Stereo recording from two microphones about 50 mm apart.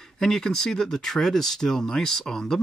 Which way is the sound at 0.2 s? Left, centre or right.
Centre.